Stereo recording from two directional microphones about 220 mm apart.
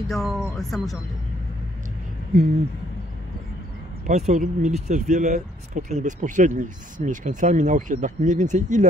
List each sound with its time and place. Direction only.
0.1 s speech: centre (ahead or behind)
4.1 s speech: 30° right (ahead or behind)